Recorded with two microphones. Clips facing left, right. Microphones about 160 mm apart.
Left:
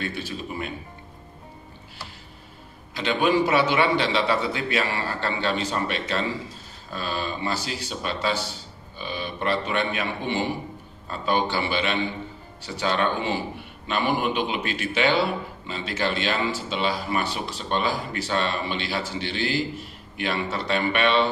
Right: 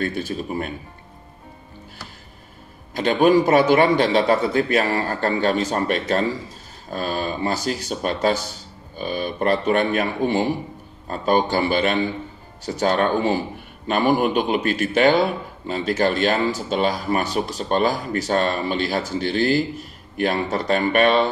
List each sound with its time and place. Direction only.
0.0 s speech: 45° right (ahead or behind)
2.9 s speech: 45° right (ahead or behind)